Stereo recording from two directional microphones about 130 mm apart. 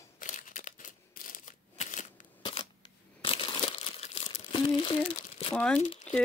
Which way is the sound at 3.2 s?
45° left (ahead or behind).